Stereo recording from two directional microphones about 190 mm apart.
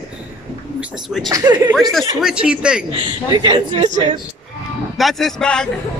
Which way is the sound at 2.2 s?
5° right (ahead or behind).